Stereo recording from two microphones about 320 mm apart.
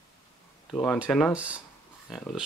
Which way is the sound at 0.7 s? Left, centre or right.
Centre.